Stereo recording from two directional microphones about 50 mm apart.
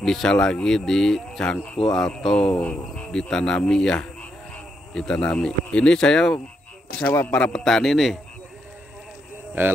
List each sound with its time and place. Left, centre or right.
0.0 s speech: centre
1.4 s speech: left
1.9 s speech: centre
2.6 s speech: left
3.1 s speech: centre
7.0 s a man's voice: left
7.2 s speech: centre
9.6 s speech: right